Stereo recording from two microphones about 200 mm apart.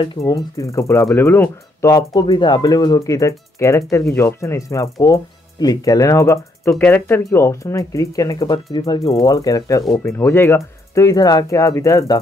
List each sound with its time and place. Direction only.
0.0 s speech: 20° left (ahead or behind)